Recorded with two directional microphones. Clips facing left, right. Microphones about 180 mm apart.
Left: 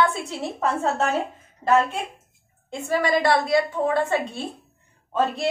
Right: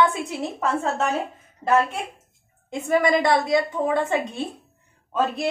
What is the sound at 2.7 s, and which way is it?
A woman's voice, 20° right (ahead or behind).